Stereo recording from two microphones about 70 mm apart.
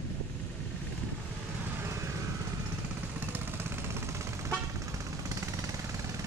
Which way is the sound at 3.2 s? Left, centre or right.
Right.